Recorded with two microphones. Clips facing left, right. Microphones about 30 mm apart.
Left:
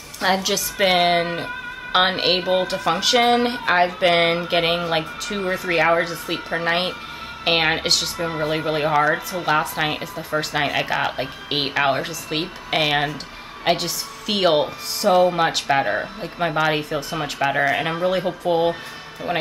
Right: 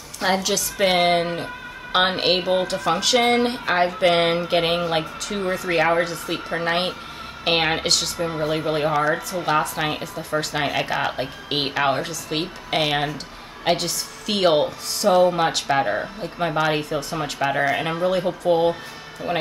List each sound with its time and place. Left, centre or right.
0.2 s speech: centre
9.1 s speech: left
9.5 s speech: centre